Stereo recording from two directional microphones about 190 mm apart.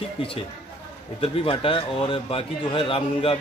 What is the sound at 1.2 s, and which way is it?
A man's voice, 30° left (ahead or behind).